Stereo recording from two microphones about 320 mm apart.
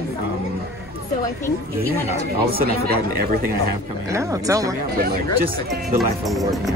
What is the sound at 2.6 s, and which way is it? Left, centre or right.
Speech, right.